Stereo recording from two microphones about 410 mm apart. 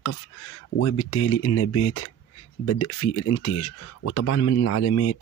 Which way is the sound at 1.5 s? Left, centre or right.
Left.